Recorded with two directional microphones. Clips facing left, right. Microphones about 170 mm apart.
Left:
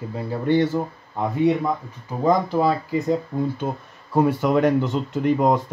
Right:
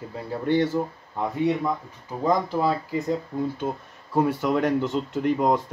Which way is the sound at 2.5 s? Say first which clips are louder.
Left 4 dB; 5° left (ahead or behind).